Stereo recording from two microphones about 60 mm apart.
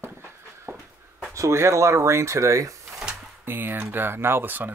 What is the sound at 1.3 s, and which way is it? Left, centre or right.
Speech, right.